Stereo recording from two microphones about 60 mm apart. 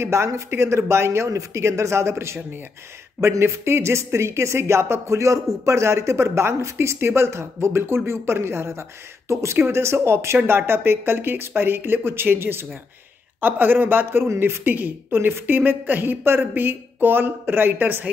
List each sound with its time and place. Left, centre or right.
0.0 s a woman's voice: right